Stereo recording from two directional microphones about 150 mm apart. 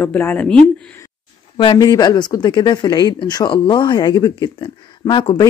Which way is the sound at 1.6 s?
35° left (ahead or behind).